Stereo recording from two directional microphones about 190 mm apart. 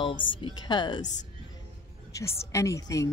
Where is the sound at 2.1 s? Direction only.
15° left (ahead or behind).